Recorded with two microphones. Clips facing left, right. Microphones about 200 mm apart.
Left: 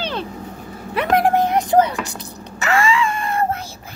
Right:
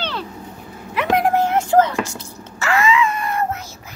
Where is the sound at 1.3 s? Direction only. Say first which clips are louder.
Even; 15° left (ahead or behind).